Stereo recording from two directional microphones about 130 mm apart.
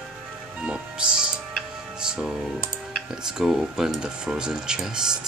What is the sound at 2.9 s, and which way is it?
Speech, 5° right (ahead or behind).